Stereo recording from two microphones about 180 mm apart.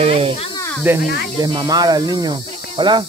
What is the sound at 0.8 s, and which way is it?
Speech, 10° right (ahead or behind).